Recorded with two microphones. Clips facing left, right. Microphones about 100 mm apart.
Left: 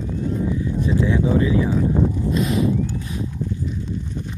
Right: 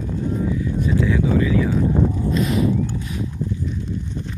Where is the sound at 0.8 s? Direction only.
25° left (ahead or behind).